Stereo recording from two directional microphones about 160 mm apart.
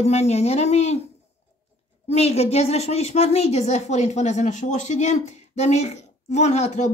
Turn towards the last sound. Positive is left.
turn(degrees=45)  # may be behind; listen again after turning